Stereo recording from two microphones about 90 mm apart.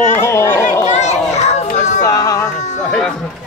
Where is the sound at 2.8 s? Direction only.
10° left (ahead or behind).